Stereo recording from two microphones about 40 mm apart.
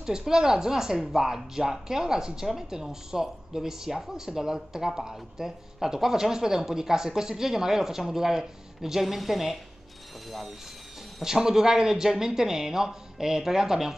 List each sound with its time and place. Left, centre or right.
0.0 s speech: centre
11.1 s speech: centre